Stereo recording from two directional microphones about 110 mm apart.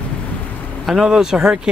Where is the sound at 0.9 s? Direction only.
5° right (ahead or behind).